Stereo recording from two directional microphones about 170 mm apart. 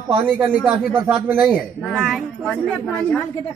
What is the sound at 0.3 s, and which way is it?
Speech, 5° right (ahead or behind).